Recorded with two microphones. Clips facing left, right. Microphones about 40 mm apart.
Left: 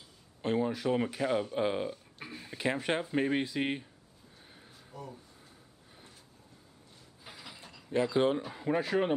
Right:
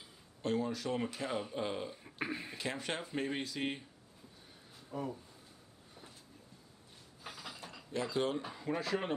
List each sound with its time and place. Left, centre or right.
0.4 s speech: left
2.1 s speech: right
2.5 s speech: left
4.9 s speech: right
7.2 s a sound: centre
7.9 s speech: left